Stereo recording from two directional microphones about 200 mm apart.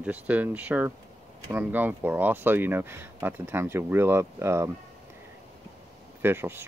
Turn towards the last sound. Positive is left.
turn(degrees=-10)  # may be behind; listen again after turning